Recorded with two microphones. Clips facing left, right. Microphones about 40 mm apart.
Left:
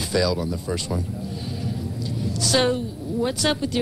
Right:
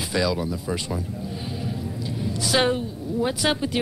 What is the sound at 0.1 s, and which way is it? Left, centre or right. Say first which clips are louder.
Speech: left 2 dB; right.